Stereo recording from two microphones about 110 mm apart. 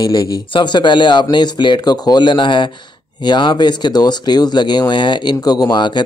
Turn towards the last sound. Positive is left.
turn(degrees=45)  # may be behind; listen again after turning